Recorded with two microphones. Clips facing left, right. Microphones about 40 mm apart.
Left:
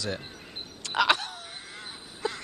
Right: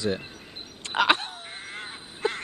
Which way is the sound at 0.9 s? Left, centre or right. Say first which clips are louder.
Right 2 dB; right.